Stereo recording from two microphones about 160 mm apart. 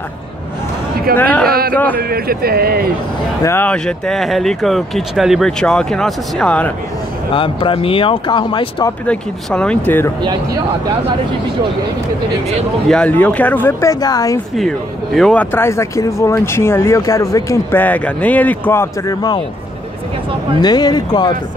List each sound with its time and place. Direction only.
1.1 s speech: 10° left (ahead or behind)
2.0 s speech: 70° right (ahead or behind)
3.4 s speech: 10° left (ahead or behind)
7.3 s speech: 30° left (ahead or behind)
9.0 s speech: 5° left (ahead or behind)
12.8 s speech: 5° left (ahead or behind); by 14.4 s 20° left (ahead or behind)
14.6 s speech: centre (ahead or behind)
15.5 s speech: 15° left (ahead or behind)
20.6 s speech: 25° left (ahead or behind)